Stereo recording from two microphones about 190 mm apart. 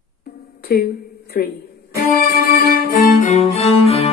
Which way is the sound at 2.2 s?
50° left (ahead or behind).